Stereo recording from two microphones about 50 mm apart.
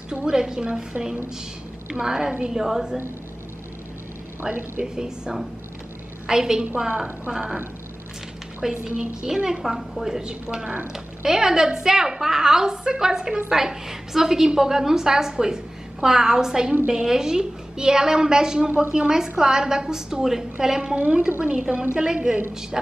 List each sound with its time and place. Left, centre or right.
0.1 s a woman's voice: centre
4.4 s a woman's voice: centre
8.8 s a woman's voice: right
9.2 s a woman's voice: centre